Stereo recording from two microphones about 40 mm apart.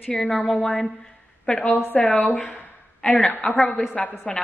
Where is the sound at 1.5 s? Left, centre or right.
Left.